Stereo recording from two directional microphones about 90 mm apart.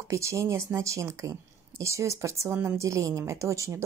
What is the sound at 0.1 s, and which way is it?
Speech, 35° right (ahead or behind).